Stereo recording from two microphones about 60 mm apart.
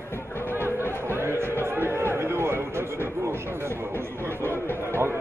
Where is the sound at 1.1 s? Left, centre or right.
Right.